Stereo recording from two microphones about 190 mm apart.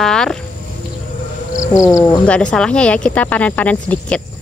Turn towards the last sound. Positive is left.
turn(degrees=5)  # may be behind; listen again after turning